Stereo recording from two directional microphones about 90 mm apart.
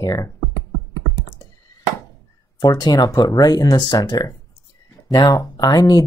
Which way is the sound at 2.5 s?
50° left (ahead or behind).